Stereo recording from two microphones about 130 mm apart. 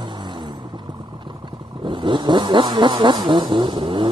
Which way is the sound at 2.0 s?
40° right (ahead or behind).